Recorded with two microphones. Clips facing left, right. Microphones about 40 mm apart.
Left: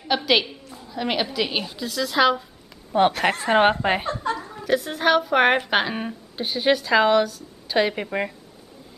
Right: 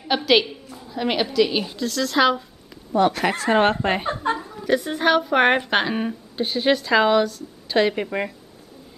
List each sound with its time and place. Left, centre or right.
0.2 s a woman's voice: centre
1.3 s a woman's voice: centre
2.9 s speech: left
3.3 s speech: centre
4.1 s a sound: right
4.6 s a woman's voice: centre